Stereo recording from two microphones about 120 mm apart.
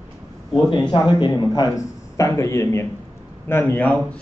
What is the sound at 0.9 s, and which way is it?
A man's voice, 35° left (ahead or behind).